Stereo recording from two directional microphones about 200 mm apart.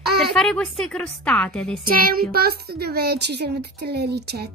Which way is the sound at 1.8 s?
45° right (ahead or behind).